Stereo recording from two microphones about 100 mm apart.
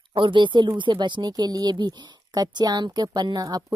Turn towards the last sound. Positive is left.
turn(degrees=-45)  # may be behind; listen again after turning